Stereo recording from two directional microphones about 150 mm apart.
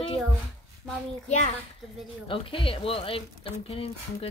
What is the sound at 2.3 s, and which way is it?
Speech, 35° left (ahead or behind).